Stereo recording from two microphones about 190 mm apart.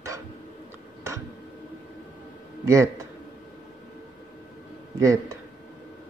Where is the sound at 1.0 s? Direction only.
15° right (ahead or behind).